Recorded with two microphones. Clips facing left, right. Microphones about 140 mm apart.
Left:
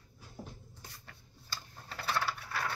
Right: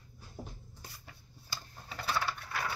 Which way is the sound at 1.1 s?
5° right (ahead or behind).